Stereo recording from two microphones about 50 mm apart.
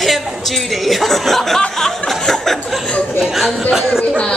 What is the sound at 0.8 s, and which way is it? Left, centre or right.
Speech, centre.